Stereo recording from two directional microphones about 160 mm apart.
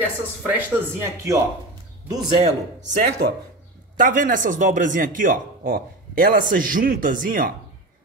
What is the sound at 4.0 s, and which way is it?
Speech, 55° right (ahead or behind).